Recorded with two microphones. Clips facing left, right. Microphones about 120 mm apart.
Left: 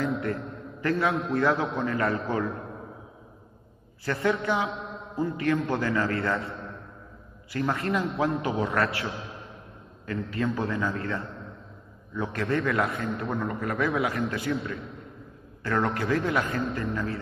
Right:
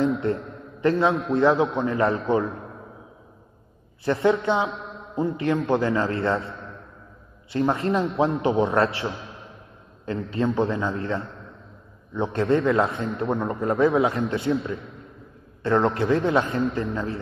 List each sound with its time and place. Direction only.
0.2 s a man's voice: 25° right (ahead or behind)
4.0 s a man's voice: 25° right (ahead or behind)
7.5 s a man's voice: 25° right (ahead or behind)